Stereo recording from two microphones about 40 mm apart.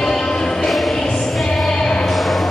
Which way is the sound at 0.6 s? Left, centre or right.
Centre.